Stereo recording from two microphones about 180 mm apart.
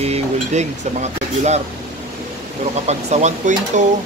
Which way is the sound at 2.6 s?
40° right (ahead or behind).